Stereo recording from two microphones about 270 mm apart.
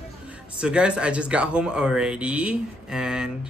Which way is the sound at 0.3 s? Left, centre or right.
Centre.